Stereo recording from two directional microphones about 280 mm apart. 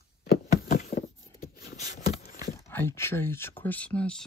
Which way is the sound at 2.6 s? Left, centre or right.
Centre.